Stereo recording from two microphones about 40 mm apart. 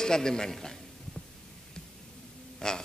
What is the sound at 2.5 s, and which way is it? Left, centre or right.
Speech, centre.